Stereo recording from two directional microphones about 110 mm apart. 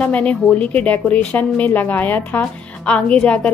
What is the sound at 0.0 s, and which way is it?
A woman's voice, 10° left (ahead or behind).